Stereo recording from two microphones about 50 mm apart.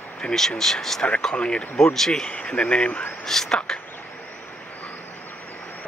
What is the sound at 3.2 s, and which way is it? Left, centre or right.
Speech, centre.